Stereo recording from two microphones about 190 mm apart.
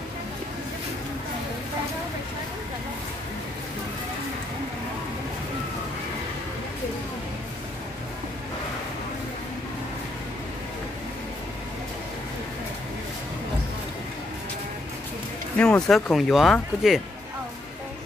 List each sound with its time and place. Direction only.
15.5 s speech: 5° left (ahead or behind)